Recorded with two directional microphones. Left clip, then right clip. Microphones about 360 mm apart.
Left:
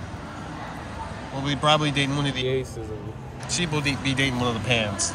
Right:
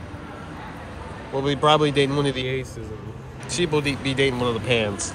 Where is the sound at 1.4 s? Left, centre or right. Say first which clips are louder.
Right 3 dB; centre.